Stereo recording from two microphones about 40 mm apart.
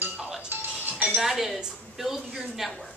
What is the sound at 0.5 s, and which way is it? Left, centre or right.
Music, right.